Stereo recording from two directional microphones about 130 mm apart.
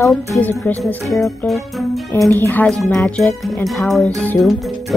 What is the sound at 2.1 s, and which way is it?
Speech, 20° left (ahead or behind).